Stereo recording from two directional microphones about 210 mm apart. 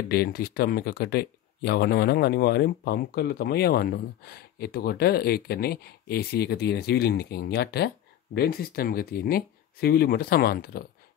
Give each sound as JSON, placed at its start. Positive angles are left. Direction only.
{"t": 0.1, "sound": "speech", "side_deg": 45}